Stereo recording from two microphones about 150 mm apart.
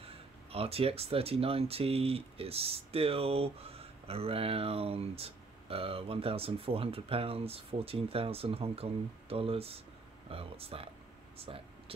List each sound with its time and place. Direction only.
0.0 s speech: 40° right (ahead or behind)